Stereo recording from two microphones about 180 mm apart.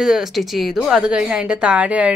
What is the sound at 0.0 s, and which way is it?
A woman's voice, centre (ahead or behind).